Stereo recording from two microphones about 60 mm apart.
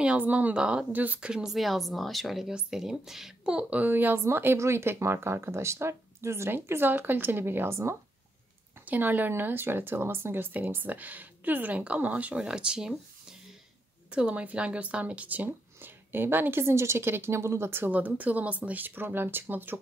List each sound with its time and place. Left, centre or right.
0.0 s speech: right
0.9 s speech: right
1.3 s speech: centre
3.7 s speech: right
8.8 s speech: right
12.4 s speech: centre
14.1 s speech: centre; by 16.6 s right
16.6 s speech: right
17.9 s speech: right